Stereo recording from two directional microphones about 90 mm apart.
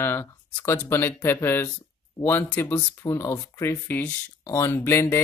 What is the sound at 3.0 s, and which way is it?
Speech, 35° left (ahead or behind).